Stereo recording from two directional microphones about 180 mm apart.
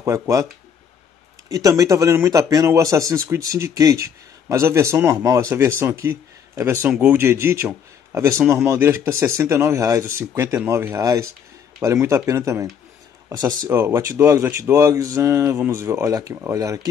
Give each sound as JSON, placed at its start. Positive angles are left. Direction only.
{"t": 0.0, "sound": "speech", "side_deg": -20}
{"t": 1.5, "sound": "speech", "side_deg": -20}
{"t": 13.7, "sound": "speech", "side_deg": -15}